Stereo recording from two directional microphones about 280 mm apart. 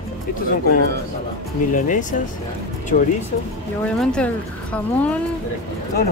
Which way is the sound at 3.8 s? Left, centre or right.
Centre.